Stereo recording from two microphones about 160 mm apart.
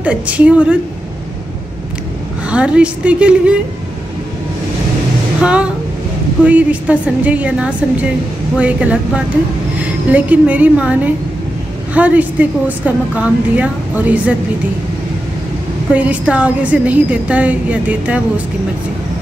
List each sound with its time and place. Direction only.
0.0 s a woman's voice: 10° right (ahead or behind)
2.5 s a woman's voice: 5° right (ahead or behind)
5.4 s a woman's voice: 5° right (ahead or behind)
15.9 s a woman's voice: 10° right (ahead or behind)